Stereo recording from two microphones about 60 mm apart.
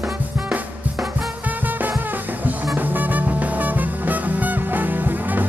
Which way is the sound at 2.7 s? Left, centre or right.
Right.